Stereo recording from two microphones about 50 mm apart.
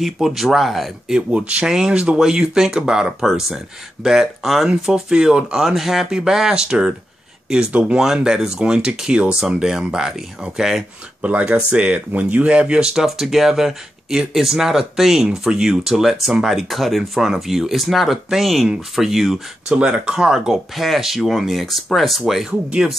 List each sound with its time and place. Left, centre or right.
0.0 s speech: centre
1.0 s speech: centre
5.1 s speech: centre
8.0 s speech: centre
11.2 s speech: right
12.9 s speech: centre
19.7 s speech: right; by 22.2 s centre
22.5 s speech: right